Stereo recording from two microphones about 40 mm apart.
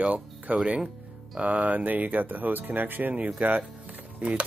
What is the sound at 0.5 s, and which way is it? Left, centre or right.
Speech, right.